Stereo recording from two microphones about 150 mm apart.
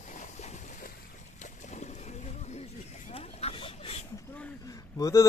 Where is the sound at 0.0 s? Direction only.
55° left (ahead or behind).